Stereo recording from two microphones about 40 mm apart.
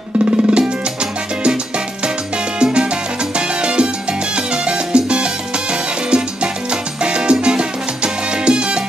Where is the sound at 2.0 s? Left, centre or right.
Right.